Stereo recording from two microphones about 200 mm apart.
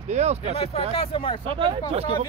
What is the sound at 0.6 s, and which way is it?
Speech, 30° left (ahead or behind).